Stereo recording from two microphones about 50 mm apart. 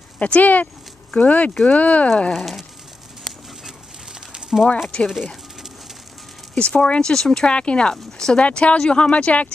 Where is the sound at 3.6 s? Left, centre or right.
Centre.